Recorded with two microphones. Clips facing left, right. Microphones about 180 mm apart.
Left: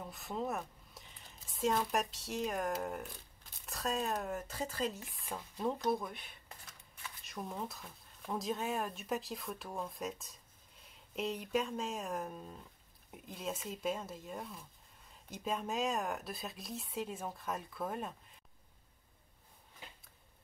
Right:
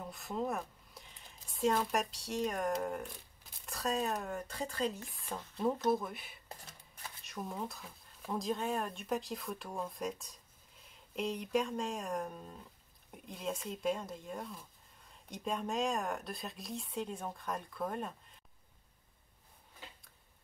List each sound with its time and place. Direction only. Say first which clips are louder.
0.0 s speech: right 2 dB; centre (ahead or behind)
6.5 s shuffling cards: right 8 dB; 35° right (ahead or behind)
7.2 s speech: right 1 dB; centre (ahead or behind)